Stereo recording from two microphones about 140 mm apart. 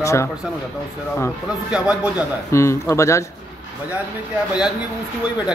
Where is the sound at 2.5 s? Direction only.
20° left (ahead or behind).